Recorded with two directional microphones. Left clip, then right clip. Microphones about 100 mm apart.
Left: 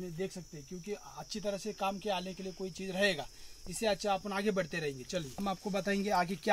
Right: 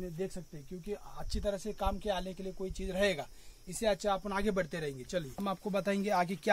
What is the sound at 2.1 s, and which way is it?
Speech, 45° right (ahead or behind).